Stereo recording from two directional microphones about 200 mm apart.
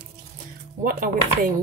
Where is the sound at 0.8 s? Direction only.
45° right (ahead or behind).